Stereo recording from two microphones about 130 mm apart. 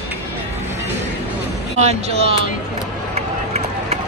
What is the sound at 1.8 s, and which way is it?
Speech, 55° right (ahead or behind).